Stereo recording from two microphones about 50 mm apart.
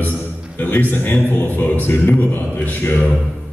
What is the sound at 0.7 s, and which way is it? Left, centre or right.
Speech, left.